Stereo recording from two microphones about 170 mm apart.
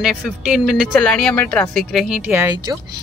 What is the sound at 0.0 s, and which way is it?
Speech, centre (ahead or behind).